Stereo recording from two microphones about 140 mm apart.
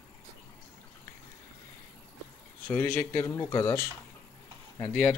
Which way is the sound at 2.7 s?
10° left (ahead or behind).